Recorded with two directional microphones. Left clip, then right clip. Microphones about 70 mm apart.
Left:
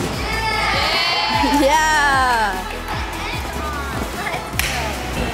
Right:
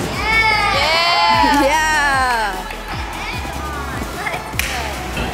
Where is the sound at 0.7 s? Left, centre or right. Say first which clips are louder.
Right 3 dB; right.